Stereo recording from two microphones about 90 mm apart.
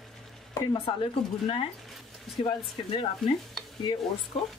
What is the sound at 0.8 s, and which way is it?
Speech, 90° left.